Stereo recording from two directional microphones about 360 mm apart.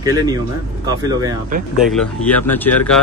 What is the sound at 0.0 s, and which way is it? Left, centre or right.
Speech, centre.